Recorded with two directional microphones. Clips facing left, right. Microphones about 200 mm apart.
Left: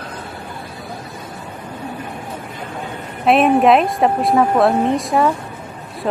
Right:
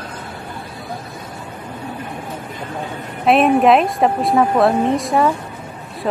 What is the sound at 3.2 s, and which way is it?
Speech, centre (ahead or behind).